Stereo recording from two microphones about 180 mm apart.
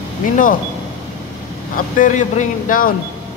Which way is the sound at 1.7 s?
45° left (ahead or behind).